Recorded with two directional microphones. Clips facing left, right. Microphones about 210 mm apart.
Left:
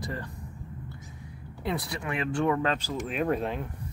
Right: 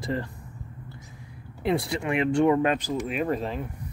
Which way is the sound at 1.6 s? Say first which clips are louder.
Right 6 dB; 25° right (ahead or behind).